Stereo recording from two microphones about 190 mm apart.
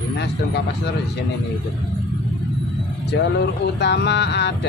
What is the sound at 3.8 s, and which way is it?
Speech, 65° left (ahead or behind).